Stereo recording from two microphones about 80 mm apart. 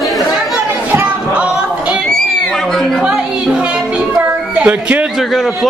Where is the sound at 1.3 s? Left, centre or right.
Centre.